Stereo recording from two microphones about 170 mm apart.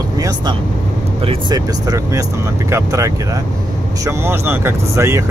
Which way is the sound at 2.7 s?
20° right (ahead or behind).